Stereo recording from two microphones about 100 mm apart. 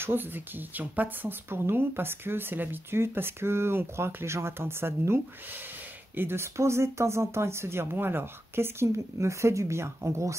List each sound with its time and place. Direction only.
0.0 s speech: 20° right (ahead or behind)